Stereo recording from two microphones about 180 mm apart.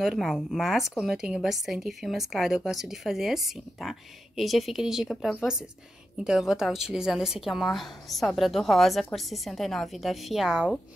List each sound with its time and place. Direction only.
0.0 s a woman's voice: centre (ahead or behind)